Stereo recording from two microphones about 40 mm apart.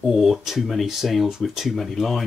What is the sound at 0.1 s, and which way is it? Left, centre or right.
Speech, centre.